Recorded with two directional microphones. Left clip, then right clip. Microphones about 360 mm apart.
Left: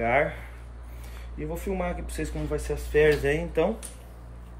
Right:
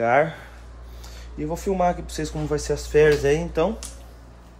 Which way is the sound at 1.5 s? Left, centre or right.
Centre.